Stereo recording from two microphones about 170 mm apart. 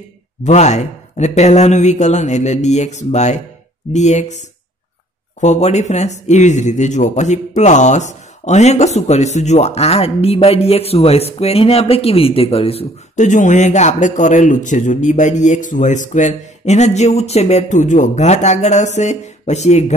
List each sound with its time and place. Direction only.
0.4 s speech: 40° left (ahead or behind)
5.4 s speech: 40° left (ahead or behind)